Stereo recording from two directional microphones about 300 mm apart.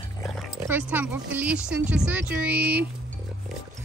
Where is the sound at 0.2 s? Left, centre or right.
Centre.